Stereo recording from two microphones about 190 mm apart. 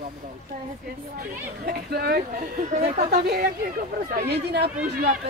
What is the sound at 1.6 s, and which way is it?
Speech, 55° right (ahead or behind).